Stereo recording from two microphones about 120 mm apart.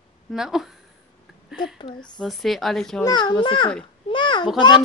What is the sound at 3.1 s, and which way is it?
Speech, 35° left (ahead or behind).